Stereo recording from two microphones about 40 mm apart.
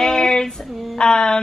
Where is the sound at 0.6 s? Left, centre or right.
Centre.